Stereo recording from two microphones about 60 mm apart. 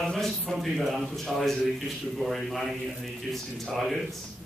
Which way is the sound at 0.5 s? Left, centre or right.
Centre.